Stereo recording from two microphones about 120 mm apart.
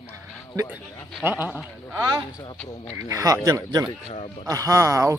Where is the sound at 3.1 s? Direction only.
30° right (ahead or behind).